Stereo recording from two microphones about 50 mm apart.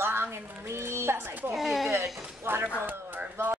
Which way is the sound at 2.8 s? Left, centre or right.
Right.